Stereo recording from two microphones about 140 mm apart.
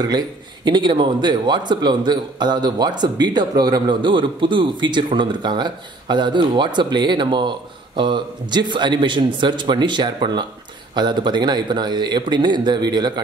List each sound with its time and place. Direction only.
0.7 s a man's voice: 35° right (ahead or behind)